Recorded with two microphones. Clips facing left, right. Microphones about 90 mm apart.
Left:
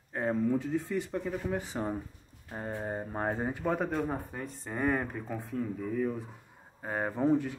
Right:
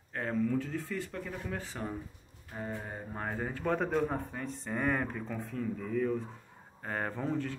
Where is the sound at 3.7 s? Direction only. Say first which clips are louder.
Right 1 dB; 5° left (ahead or behind).